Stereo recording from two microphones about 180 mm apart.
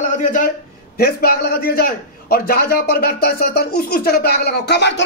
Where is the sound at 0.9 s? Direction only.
55° left (ahead or behind).